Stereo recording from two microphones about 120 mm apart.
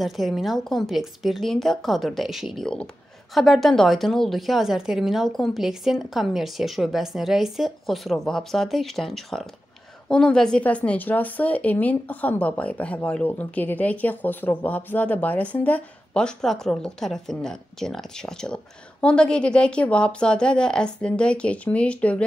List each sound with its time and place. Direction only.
0.0 s a woman's voice: centre (ahead or behind)